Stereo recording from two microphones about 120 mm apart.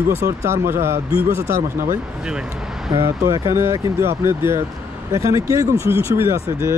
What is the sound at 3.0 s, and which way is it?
Speech, 25° right (ahead or behind).